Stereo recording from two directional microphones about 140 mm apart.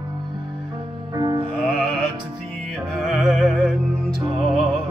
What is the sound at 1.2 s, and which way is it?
Music, 35° right (ahead or behind).